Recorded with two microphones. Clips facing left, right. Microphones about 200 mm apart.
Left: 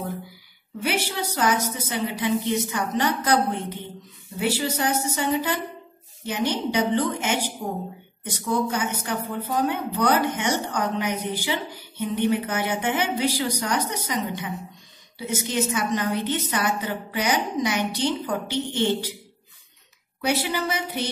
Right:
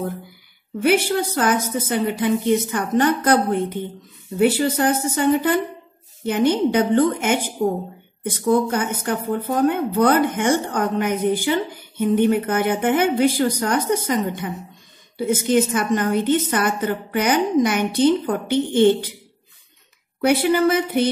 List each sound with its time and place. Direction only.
0.8 s speech: 50° right (ahead or behind)
20.2 s speech: 55° right (ahead or behind)